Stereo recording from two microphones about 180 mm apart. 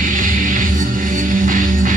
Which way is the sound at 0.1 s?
45° right (ahead or behind).